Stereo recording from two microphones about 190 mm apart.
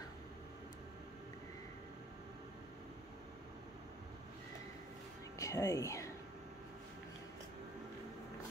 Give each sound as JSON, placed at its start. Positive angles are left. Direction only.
{"t": 5.4, "sound": "speech", "side_deg": 15}